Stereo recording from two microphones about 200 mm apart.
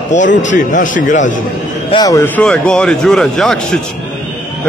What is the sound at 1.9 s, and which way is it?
Speech, 20° left (ahead or behind).